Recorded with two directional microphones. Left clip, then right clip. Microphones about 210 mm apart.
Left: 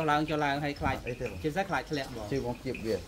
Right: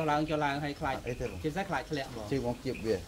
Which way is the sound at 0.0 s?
20° left (ahead or behind).